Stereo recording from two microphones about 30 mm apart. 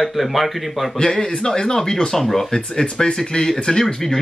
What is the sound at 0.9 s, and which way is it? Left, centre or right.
Speech, centre.